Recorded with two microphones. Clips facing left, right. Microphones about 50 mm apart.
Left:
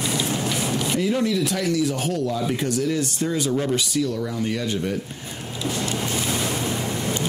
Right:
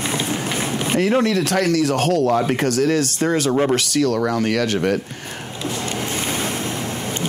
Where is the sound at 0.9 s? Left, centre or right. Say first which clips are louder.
Right 6 dB; right.